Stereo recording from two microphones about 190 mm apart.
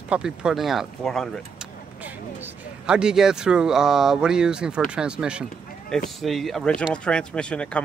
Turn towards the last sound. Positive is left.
turn(degrees=5)  # may be behind; listen again after turning